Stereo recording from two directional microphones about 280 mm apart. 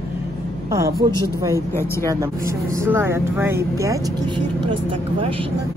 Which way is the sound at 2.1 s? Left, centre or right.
Centre.